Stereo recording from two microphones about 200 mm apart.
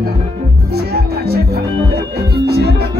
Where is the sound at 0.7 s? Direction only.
50° right (ahead or behind).